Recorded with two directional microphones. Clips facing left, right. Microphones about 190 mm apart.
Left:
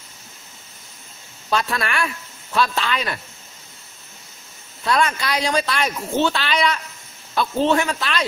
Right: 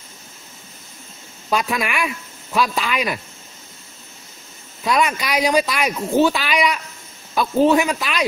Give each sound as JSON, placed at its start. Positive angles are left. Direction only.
{"t": 1.5, "sound": "a woman's voice", "side_deg": -15}
{"t": 4.8, "sound": "a woman's voice", "side_deg": -15}